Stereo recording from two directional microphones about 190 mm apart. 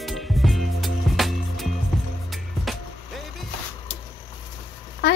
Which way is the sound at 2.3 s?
Centre (ahead or behind).